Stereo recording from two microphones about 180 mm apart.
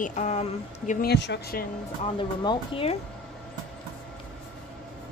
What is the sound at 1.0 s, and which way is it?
Speech, 70° left (ahead or behind).